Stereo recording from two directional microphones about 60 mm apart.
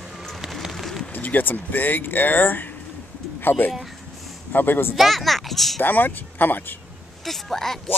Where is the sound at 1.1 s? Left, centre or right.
Left.